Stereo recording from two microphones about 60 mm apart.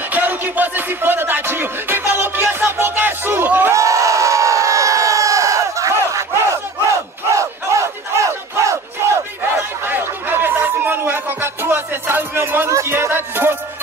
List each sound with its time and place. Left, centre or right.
0.1 s music: right
3.7 s crowd: right
9.8 s music: right
12.6 s music: right